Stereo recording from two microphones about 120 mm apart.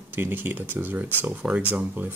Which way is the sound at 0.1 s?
15° right (ahead or behind).